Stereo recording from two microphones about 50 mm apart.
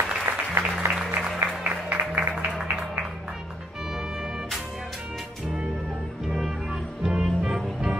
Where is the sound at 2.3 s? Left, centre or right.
Right.